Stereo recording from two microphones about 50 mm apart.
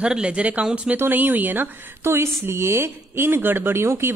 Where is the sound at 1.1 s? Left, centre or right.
Right.